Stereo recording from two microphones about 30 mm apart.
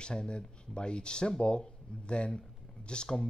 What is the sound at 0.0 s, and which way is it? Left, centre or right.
Speech, left.